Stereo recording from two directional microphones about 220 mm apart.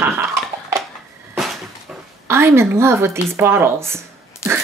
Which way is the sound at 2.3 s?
10° right (ahead or behind).